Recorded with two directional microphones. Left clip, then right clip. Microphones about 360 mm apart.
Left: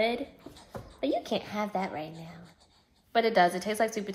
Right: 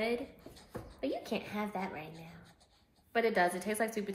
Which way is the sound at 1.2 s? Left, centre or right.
Centre.